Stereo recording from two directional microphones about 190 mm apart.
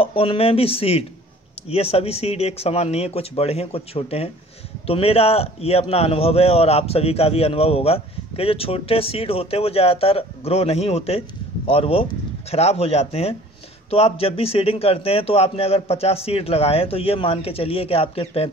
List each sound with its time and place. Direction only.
0.0 s a man's voice: 30° left (ahead or behind)